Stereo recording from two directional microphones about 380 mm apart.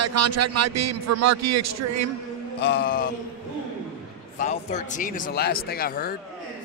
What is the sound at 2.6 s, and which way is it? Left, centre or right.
Speech, left.